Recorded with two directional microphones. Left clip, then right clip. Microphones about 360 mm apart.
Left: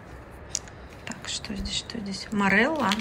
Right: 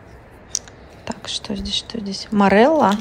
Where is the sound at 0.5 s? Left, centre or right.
Centre.